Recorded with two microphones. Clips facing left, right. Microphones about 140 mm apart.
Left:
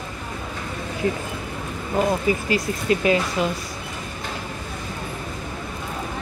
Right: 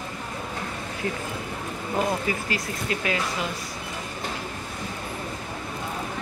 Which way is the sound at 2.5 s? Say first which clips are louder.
Left 7 dB; 25° left (ahead or behind).